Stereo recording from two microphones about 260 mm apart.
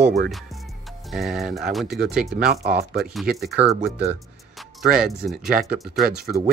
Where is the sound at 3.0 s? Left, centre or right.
Centre.